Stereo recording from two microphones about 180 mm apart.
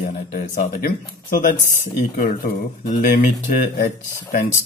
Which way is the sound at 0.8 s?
50° left (ahead or behind).